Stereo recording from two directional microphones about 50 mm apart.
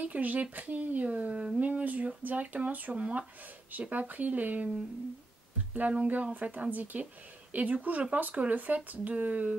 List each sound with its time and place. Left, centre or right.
0.0 s speech: right
5.7 s speech: right